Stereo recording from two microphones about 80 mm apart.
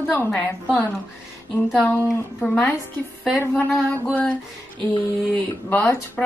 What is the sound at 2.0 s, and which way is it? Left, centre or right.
Speech, centre.